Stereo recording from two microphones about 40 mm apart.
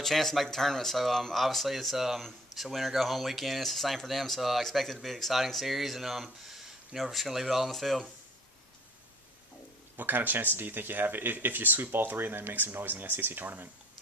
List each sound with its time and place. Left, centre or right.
0.0 s speech: centre
9.9 s speech: right